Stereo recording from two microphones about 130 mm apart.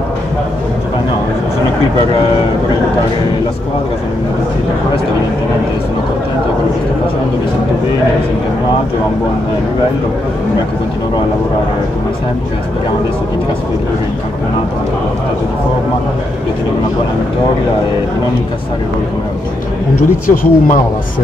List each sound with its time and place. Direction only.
20.2 s speech: 90° left